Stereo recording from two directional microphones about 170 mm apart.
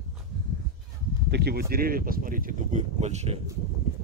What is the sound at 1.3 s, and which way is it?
Speech, 70° right (ahead or behind).